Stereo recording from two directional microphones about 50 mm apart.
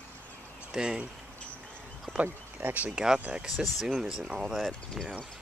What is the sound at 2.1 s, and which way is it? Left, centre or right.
Speech, right.